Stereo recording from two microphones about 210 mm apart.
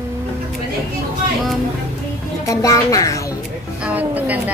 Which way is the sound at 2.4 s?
15° left (ahead or behind).